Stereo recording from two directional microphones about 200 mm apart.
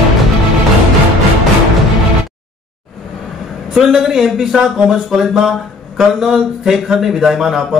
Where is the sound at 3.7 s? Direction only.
Centre (ahead or behind).